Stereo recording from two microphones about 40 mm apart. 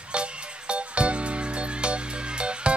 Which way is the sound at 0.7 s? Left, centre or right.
Right.